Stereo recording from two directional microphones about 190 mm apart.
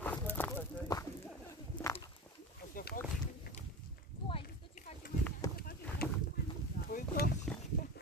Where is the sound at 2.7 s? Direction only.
45° left (ahead or behind).